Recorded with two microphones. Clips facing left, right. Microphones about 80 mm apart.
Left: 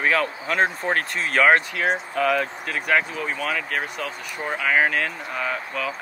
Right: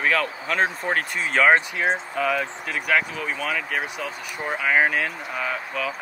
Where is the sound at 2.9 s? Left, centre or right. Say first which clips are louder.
Left 1 dB; centre.